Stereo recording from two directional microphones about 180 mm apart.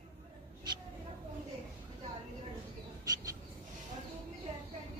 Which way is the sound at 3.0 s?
20° right (ahead or behind).